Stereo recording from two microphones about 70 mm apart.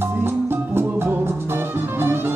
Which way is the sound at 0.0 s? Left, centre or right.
Right.